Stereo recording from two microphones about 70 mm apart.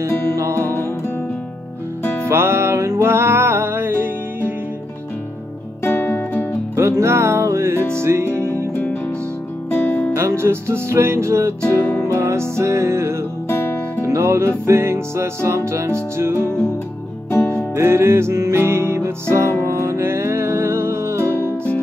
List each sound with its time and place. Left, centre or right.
0.0 s music: right
0.6 s music: left
2.2 s music: right
5.9 s music: left
6.7 s music: right
9.8 s music: left
10.1 s music: right
11.6 s music: left
12.2 s music: right
13.5 s music: left
14.0 s music: right
17.4 s music: centre
17.7 s music: right
21.4 s music: left